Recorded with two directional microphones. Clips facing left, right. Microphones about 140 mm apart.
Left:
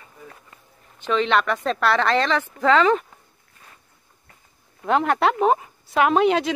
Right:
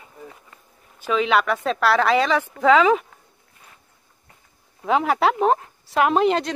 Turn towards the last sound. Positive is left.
turn(degrees=0)  # may be behind; listen again after turning